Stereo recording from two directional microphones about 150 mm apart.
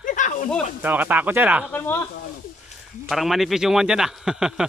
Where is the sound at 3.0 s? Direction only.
Centre (ahead or behind).